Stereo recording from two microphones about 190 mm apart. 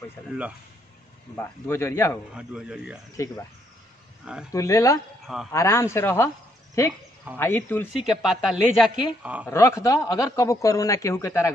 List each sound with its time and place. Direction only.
1.3 s a man's voice: 10° left (ahead or behind)
2.3 s speech: 5° right (ahead or behind)
4.5 s a man's voice: 15° left (ahead or behind)
5.2 s speech: centre (ahead or behind)
5.5 s a man's voice: 15° left (ahead or behind)
7.9 s speech: centre (ahead or behind)
9.5 s a man's voice: 15° left (ahead or behind)